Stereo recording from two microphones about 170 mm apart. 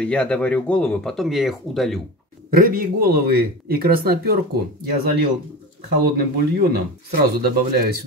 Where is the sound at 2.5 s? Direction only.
55° right (ahead or behind).